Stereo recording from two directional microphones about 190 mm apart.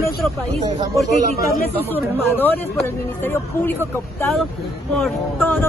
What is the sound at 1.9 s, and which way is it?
Speech, 10° left (ahead or behind).